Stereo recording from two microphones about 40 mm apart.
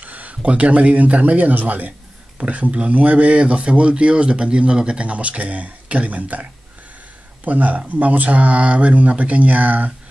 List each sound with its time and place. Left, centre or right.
0.0 s a man's voice: right
7.4 s speech: right